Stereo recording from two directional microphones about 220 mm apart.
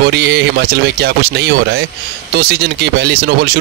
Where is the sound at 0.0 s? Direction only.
50° right (ahead or behind).